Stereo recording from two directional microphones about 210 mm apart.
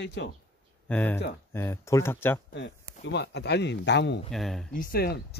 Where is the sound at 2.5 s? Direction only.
55° left (ahead or behind).